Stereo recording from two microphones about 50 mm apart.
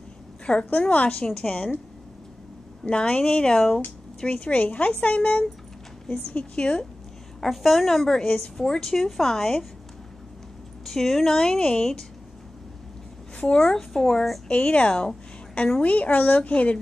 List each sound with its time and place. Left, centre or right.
0.7 s a woman's voice: left; by 1.7 s centre
2.9 s a woman's voice: centre
4.2 s a woman's voice: left
7.3 s a woman's voice: centre
10.9 s speech: centre
13.4 s speech: centre
14.5 s a woman's voice: left